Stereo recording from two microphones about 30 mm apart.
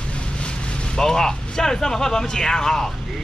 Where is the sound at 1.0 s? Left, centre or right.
Centre.